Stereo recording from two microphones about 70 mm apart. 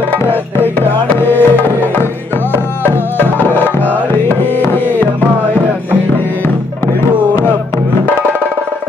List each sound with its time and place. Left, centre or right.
0.1 s music: left